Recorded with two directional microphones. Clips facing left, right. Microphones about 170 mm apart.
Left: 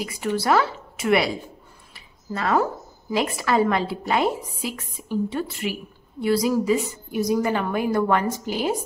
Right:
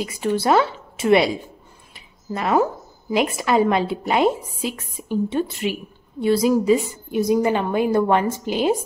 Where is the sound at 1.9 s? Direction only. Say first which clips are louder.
Right 2 dB; 15° right (ahead or behind).